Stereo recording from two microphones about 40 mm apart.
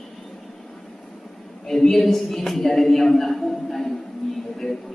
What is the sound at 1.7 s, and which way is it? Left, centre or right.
A man's voice, centre.